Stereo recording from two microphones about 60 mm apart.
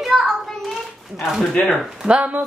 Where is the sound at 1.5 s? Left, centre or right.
Centre.